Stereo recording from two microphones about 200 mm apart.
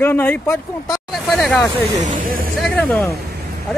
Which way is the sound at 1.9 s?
40° right (ahead or behind).